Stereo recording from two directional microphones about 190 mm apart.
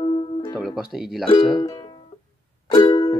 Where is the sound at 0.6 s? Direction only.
5° right (ahead or behind).